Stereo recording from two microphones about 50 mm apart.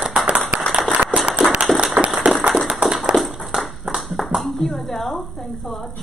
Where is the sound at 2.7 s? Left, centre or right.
Centre.